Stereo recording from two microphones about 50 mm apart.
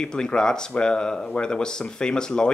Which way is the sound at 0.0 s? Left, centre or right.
Centre.